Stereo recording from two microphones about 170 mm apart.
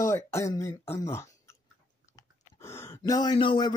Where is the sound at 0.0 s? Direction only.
15° left (ahead or behind).